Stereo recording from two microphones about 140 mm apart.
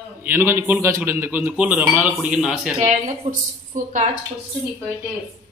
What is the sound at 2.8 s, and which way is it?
A woman's voice, 65° right (ahead or behind).